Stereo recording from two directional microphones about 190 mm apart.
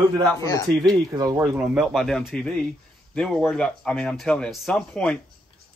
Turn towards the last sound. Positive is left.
turn(degrees=5)  # may be behind; listen again after turning